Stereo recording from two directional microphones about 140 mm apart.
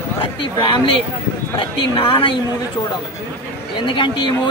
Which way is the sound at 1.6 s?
40° left (ahead or behind).